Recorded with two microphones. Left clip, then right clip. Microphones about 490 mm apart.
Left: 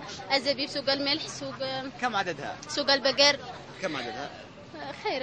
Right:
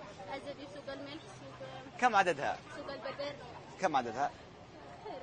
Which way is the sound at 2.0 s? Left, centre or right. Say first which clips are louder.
Right 2 dB; right.